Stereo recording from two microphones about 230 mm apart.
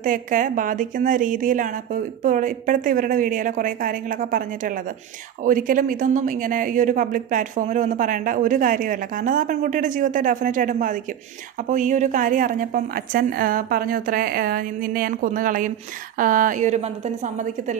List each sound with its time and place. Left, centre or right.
0.0 s speech: right